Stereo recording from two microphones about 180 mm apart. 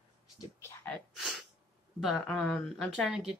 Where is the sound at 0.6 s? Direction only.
10° left (ahead or behind).